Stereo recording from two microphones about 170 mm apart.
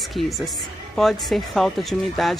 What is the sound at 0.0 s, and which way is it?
Speech, centre (ahead or behind).